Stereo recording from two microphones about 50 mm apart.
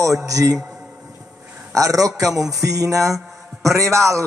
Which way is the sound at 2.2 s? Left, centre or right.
Centre.